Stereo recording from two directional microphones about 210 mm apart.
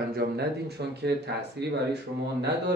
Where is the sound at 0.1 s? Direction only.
50° right (ahead or behind).